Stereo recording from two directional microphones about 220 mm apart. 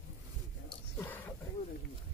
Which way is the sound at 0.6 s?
10° left (ahead or behind).